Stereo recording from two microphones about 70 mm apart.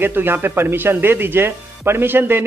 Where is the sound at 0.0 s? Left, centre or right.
Right.